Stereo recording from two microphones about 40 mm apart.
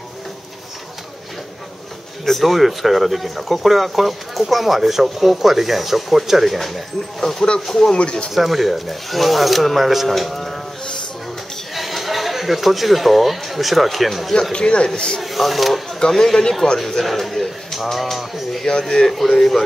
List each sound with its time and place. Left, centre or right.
2.2 s speech: centre
7.9 s speech: left
8.4 s speech: centre
11.7 s speech: centre
14.5 s speech: left
15.2 s a man's voice: centre
18.7 s speech: centre